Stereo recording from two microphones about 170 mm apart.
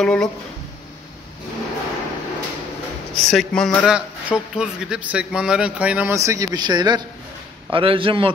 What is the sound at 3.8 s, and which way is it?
A man's voice, 5° right (ahead or behind).